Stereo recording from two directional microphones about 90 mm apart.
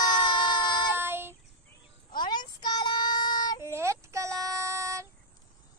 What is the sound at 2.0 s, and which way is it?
Child singing, 55° left (ahead or behind).